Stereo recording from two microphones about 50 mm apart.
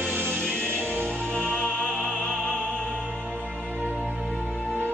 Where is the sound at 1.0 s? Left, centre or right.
Centre.